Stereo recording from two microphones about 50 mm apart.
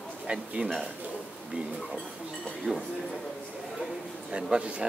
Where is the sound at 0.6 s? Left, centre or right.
Right.